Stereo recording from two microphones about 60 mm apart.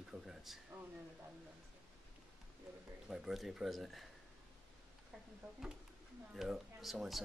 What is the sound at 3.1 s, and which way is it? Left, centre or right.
Speech, centre.